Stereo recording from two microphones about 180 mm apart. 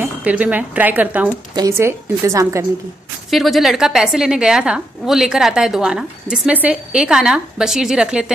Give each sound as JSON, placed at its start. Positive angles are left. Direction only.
{"t": 0.0, "sound": "speech", "side_deg": -10}
{"t": 3.3, "sound": "a woman's voice", "side_deg": 0}